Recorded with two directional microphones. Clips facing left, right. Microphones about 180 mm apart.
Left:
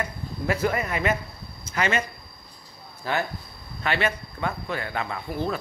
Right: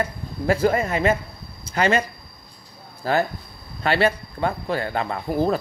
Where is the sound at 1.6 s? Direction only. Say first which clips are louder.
Right 5 dB; 30° right (ahead or behind).